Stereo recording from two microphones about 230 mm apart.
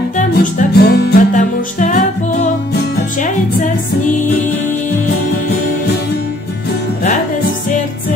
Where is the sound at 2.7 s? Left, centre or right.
Left.